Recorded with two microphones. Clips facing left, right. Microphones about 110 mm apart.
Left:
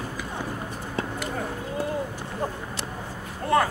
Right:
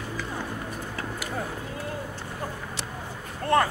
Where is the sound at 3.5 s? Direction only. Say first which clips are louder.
Even; centre (ahead or behind).